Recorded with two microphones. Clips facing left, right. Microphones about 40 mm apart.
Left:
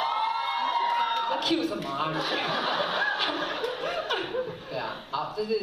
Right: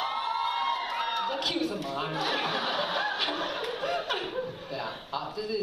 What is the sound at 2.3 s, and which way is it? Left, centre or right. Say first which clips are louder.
Snicker: left 2 dB; left.